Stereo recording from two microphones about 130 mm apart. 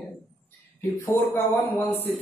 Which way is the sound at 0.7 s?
20° left (ahead or behind).